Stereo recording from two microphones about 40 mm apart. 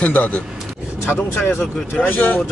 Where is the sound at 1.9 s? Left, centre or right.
Left.